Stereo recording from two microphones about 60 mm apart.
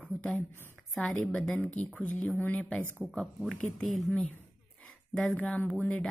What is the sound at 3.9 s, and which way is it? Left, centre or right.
Speech, centre.